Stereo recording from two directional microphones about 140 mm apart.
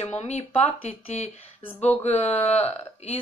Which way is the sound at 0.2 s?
50° left (ahead or behind).